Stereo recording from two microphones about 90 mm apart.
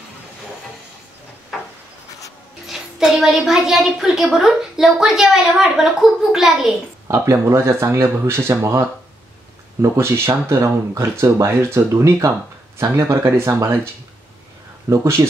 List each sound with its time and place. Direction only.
2.6 s a woman's voice: 5° right (ahead or behind)
7.1 s speech: 35° right (ahead or behind)
14.9 s speech: 30° right (ahead or behind)